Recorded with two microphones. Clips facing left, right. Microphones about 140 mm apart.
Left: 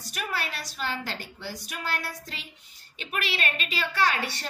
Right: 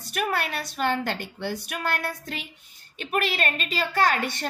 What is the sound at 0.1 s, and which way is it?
A woman's voice, 55° right (ahead or behind).